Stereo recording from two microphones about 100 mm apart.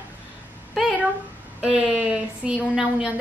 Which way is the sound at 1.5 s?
5° right (ahead or behind).